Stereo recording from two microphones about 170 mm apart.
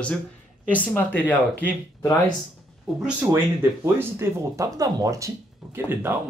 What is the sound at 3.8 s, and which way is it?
Speech, 15° right (ahead or behind).